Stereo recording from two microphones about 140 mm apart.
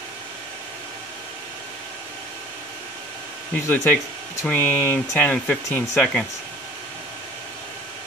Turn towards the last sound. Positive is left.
turn(degrees=10)  # may be behind; listen again after turning